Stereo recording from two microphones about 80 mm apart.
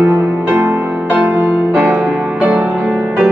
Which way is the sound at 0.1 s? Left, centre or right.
Right.